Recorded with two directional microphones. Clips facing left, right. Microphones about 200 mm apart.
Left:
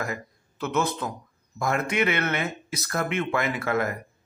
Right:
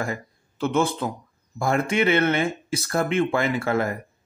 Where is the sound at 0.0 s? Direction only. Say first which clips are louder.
Right 3 dB; 30° right (ahead or behind).